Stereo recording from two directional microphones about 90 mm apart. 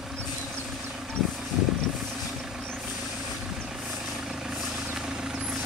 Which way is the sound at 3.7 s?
5° right (ahead or behind).